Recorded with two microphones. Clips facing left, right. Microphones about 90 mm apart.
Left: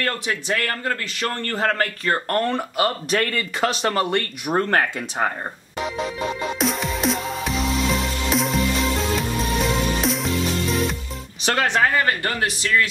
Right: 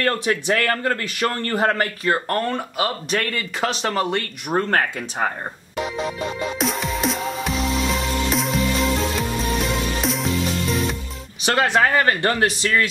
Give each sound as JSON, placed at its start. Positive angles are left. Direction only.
{"t": 0.0, "sound": "speech", "side_deg": -20}
{"t": 1.0, "sound": "speech", "side_deg": -15}
{"t": 6.6, "sound": "music", "side_deg": 0}
{"t": 11.4, "sound": "speech", "side_deg": -5}
{"t": 11.8, "sound": "speech", "side_deg": -25}